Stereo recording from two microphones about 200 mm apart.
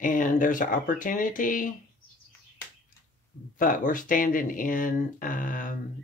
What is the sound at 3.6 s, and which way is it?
Speech, 40° left (ahead or behind).